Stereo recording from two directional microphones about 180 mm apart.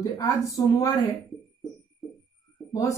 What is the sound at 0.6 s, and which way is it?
Speech, 20° left (ahead or behind).